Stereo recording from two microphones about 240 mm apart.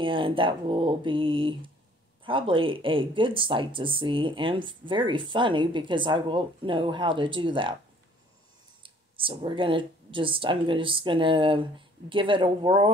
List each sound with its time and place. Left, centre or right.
0.0 s speech: right
8.8 s speech: right